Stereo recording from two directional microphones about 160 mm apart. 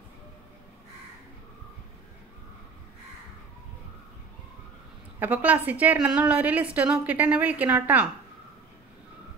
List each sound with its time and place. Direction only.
5.2 s a woman's voice: 10° right (ahead or behind)